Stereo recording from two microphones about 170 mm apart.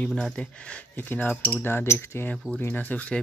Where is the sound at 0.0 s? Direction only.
5° left (ahead or behind).